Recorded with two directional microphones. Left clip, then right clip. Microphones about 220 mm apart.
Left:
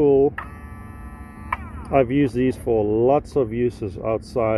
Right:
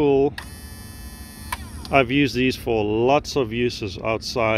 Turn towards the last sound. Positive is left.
turn(degrees=-10)  # may be behind; listen again after turning